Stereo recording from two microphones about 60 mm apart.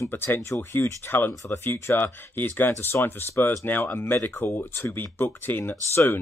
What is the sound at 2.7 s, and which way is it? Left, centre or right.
Speech, left.